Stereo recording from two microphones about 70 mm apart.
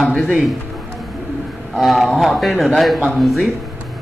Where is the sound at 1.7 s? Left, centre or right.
Centre.